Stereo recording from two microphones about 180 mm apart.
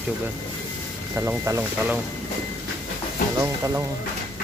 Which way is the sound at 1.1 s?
15° right (ahead or behind).